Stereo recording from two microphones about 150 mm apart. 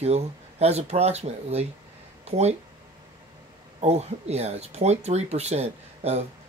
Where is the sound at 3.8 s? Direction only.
45° right (ahead or behind).